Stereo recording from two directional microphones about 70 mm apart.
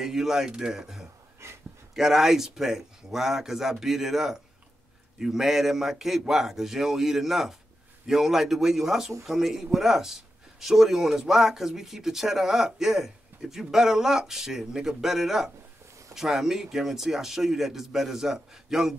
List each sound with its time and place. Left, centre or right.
0.0 s speech: centre
1.4 s a sound: right
2.0 s speech: centre